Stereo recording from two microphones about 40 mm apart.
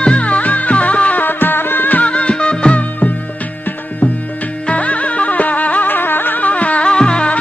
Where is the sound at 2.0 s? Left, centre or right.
Left.